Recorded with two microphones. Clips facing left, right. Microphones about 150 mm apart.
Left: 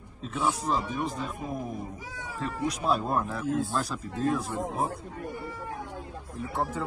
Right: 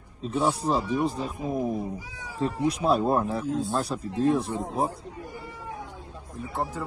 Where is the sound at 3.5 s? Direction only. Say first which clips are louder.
Left 1 dB; centre (ahead or behind).